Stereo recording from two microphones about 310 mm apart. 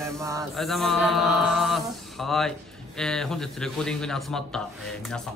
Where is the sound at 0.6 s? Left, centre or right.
Centre.